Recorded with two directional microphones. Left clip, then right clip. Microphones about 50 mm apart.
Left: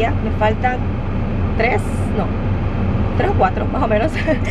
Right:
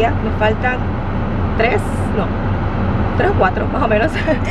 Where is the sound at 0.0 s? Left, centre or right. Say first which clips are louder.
Right 2 dB; right.